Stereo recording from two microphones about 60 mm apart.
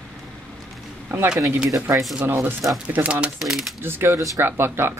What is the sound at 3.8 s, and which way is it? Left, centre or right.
Speech, right.